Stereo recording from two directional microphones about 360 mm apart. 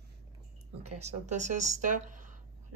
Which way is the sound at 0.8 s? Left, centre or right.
Centre.